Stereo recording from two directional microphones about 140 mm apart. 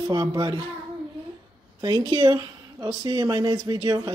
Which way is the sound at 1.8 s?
30° right (ahead or behind).